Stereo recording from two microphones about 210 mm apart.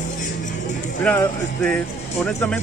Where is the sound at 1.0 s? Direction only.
5° left (ahead or behind).